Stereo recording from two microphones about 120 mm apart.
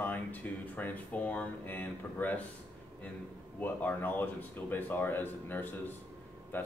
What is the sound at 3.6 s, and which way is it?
Speech, 15° left (ahead or behind).